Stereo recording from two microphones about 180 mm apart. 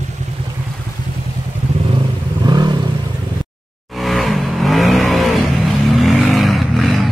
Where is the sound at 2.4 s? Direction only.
25° right (ahead or behind).